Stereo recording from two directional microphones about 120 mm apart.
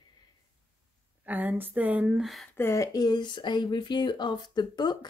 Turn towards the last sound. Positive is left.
turn(degrees=35)  # may be behind; listen again after turning